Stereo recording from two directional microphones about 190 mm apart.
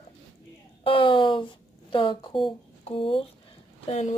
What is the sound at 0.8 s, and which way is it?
A woman's voice, 25° left (ahead or behind).